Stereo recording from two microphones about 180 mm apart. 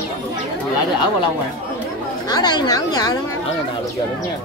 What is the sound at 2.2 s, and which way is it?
Speech, 20° left (ahead or behind).